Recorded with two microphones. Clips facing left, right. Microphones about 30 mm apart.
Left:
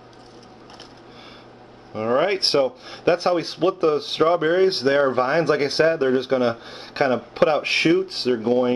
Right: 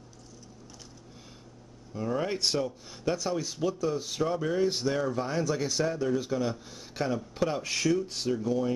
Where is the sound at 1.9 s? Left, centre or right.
Left.